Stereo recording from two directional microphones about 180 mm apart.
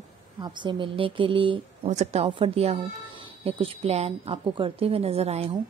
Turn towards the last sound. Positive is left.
turn(degrees=-35)  # may be behind; listen again after turning